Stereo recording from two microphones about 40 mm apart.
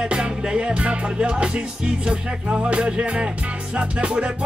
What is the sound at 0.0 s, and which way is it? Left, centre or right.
Music, right.